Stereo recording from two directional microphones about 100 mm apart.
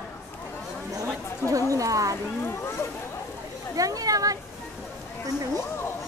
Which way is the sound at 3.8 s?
35° right (ahead or behind).